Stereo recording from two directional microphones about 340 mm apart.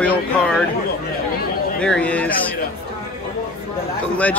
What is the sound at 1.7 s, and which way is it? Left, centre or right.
Speech, centre.